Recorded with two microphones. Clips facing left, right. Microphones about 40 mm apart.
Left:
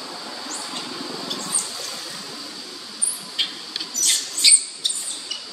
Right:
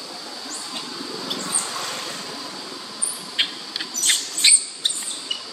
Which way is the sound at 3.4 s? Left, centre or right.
Right.